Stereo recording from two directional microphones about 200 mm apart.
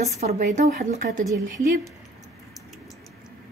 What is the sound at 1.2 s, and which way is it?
Speech, 15° right (ahead or behind).